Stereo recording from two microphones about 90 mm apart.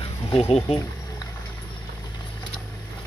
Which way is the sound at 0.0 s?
90° left.